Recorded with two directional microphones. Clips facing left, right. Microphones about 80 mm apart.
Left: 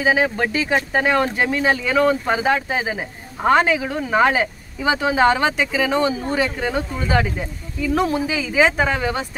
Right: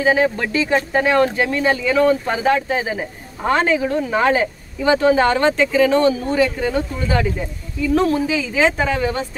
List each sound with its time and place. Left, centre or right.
0.0 s speech: centre
6.4 s speech: left